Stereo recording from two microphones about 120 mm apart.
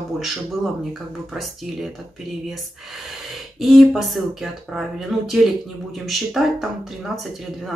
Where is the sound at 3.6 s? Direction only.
Centre (ahead or behind).